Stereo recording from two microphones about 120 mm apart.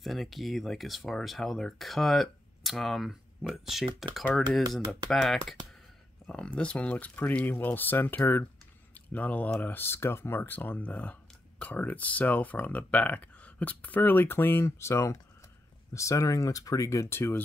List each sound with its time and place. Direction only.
0.0 s speech: centre (ahead or behind); by 17.4 s 20° left (ahead or behind)